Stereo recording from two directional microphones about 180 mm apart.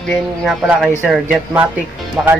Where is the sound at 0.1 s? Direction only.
Centre (ahead or behind).